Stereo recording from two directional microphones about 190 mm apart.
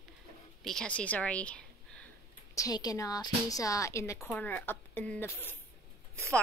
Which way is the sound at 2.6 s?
20° left (ahead or behind).